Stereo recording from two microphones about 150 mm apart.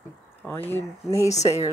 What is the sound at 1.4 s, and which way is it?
Speech, 45° left (ahead or behind).